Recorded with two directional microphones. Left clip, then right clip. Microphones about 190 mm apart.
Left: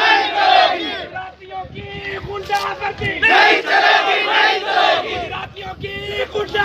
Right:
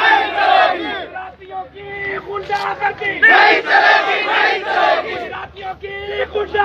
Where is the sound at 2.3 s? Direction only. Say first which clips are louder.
Left 1 dB; 55° left (ahead or behind).